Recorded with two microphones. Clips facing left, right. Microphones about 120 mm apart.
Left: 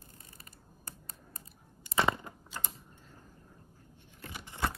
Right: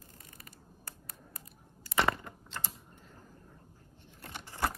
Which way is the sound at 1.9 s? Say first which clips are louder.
Even; 20° left (ahead or behind).